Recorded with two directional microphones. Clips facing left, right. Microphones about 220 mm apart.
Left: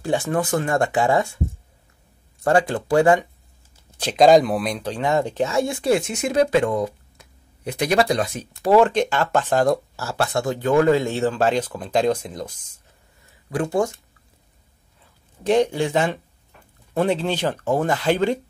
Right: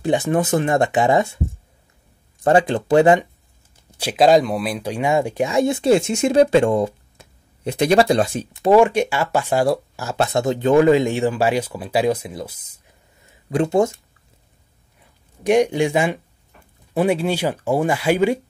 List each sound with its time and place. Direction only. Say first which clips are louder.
0.0 s speech: right 3 dB; 20° right (ahead or behind)
2.4 s speech: right 3 dB; 20° right (ahead or behind)
3.9 s speech: left 1 dB; 10° right (ahead or behind); by 8.7 s 30° right (ahead or behind)
8.7 s speech: right 1 dB; 10° right (ahead or behind)
13.5 s speech: right 4 dB; 25° right (ahead or behind)
15.4 s speech: right 2 dB; 15° right (ahead or behind)